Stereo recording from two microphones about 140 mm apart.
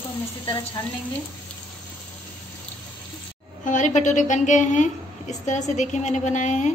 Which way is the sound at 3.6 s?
65° left (ahead or behind).